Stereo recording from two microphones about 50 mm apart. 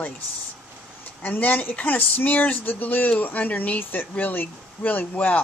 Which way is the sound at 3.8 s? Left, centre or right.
Left.